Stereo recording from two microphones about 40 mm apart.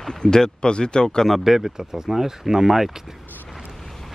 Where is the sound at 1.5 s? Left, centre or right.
Centre.